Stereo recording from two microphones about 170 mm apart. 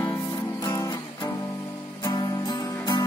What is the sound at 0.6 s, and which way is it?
Music, 20° left (ahead or behind).